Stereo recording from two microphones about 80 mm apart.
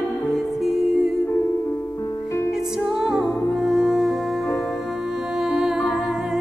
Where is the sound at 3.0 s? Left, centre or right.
Centre.